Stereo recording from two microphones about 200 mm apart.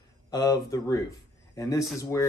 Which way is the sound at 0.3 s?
20° left (ahead or behind).